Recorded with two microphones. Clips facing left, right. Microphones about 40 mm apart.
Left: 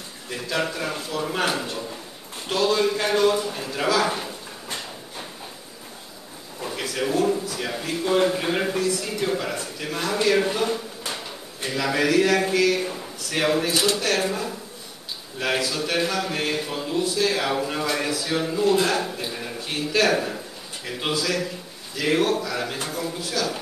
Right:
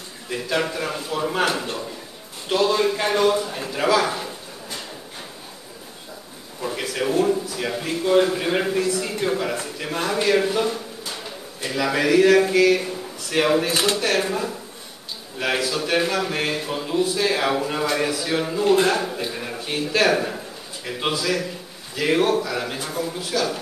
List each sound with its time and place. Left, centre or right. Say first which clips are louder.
0.3 s a man's voice: right 3 dB; centre
6.6 s a man's voice: right 2 dB; centre
8.7 s a man's voice: right 2 dB; centre
10.4 s a man's voice: right 2 dB; centre
12.5 s a man's voice: right 3 dB; centre
13.7 s speech: right 1 dB; right
13.9 s a man's voice: right 2 dB; centre
17.0 s a man's voice: right 2 dB; right
18.9 s a sound: right 2 dB; centre
19.5 s a man's voice: even; centre